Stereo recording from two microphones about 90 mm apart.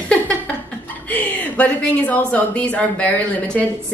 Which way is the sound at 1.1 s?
20° left (ahead or behind).